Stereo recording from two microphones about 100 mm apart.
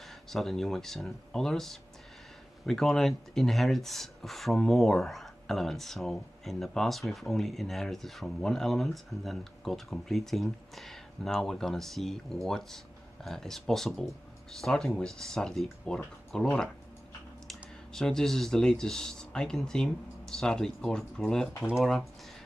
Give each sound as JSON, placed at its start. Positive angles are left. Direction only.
{"t": 0.0, "sound": "speech", "side_deg": 0}
{"t": 17.5, "sound": "speech", "side_deg": 5}